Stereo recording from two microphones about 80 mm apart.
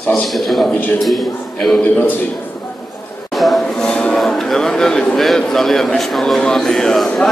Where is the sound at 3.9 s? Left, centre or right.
Centre.